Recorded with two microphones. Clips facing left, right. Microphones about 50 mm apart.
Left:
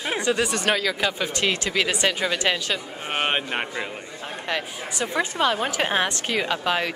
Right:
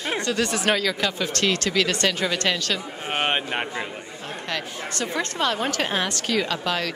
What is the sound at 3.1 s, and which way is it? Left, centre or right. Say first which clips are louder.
Speech: even; centre.